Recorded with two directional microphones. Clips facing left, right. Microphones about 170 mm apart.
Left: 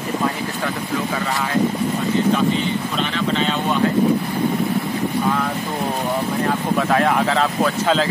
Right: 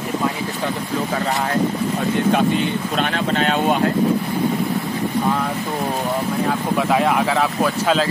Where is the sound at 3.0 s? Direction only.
50° right (ahead or behind).